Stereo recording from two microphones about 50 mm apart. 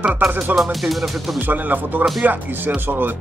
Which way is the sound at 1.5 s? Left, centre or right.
Right.